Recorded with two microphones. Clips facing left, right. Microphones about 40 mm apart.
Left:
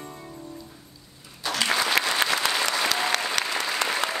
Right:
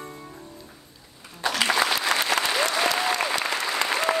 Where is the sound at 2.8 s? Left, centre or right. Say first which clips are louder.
Right 1 dB; left.